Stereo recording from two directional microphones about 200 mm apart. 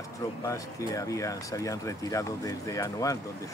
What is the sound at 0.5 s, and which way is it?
Speech, 15° left (ahead or behind).